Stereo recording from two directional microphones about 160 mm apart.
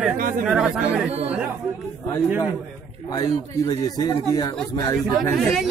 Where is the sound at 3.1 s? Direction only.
25° left (ahead or behind).